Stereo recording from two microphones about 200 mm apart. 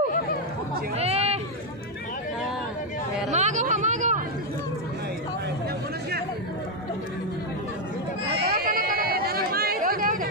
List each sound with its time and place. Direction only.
0.9 s a sound: 30° right (ahead or behind)
3.3 s chatter: 35° right (ahead or behind)
8.4 s chatter: 50° right (ahead or behind)